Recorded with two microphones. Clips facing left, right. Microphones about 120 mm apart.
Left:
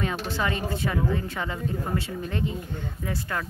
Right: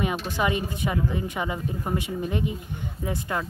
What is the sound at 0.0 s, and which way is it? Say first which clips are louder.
Speech: right 2 dB; 15° right (ahead or behind).